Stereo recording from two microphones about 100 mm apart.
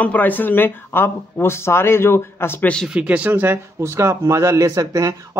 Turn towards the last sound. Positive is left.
turn(degrees=-35)  # may be behind; listen again after turning